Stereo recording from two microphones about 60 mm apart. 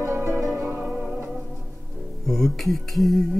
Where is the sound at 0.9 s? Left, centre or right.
Centre.